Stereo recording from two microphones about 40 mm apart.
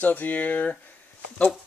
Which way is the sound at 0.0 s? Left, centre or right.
Left.